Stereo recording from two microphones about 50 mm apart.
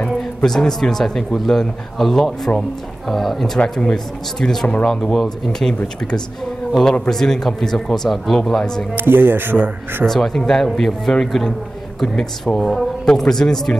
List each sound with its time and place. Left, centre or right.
0.4 s speech: centre
6.8 s speech: centre
8.9 s speech: right
10.0 s speech: centre